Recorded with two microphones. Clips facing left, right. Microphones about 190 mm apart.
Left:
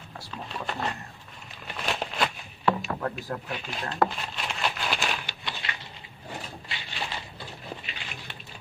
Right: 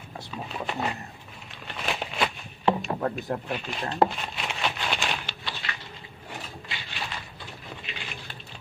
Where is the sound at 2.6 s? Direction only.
20° right (ahead or behind).